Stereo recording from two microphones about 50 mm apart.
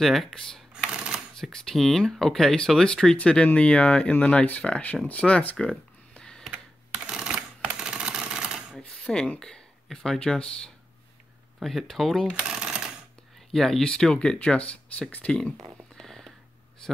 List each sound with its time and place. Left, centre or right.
0.0 s speech: centre
0.9 s shuffling cards: centre
1.4 s speech: centre; by 5.6 s left
6.1 s a sound: centre
7.1 s typewriter: centre
8.7 s mechanisms: centre
9.4 s speech: centre
11.6 s speech: centre
12.4 s shuffling cards: centre
13.5 s speech: centre; by 15.3 s left
16.0 s a sound: centre